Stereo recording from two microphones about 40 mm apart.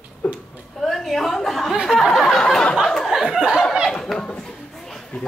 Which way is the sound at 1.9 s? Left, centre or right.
Centre.